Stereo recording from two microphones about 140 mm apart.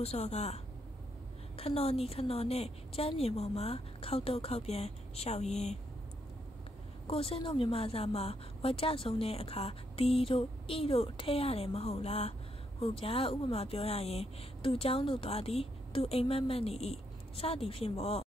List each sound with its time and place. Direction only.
0.0 s speech: 50° left (ahead or behind)
1.6 s speech: 45° left (ahead or behind)
7.1 s speech: 40° left (ahead or behind)